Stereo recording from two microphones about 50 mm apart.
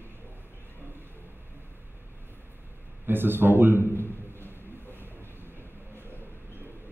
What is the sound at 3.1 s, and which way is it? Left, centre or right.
Speech, right.